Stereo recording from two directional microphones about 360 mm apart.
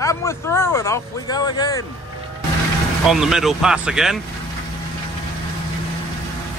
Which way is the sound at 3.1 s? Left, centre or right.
Centre.